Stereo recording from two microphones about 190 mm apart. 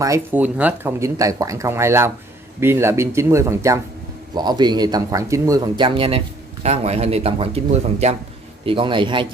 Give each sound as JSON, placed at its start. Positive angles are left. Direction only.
{"t": 0.0, "sound": "speech", "side_deg": -15}